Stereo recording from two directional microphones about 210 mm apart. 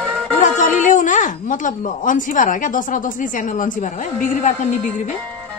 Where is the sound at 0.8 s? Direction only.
35° left (ahead or behind).